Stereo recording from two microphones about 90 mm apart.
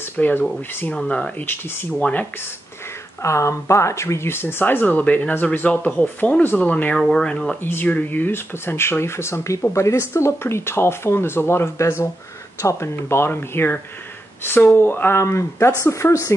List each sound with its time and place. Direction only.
0.2 s speech: 20° left (ahead or behind)
0.9 s speech: 10° left (ahead or behind)
3.2 s speech: 35° left (ahead or behind); by 7.5 s 5° left (ahead or behind)
7.6 s a woman's voice: 20° left (ahead or behind)